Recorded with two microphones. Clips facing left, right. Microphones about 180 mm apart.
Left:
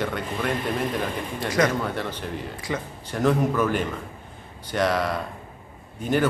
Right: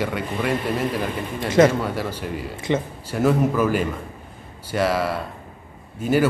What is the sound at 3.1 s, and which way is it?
Speech, 5° right (ahead or behind).